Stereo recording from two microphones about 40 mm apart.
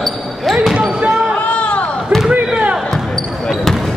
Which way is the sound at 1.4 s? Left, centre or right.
Left.